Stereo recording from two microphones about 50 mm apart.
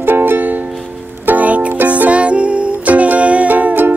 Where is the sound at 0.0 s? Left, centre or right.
Right.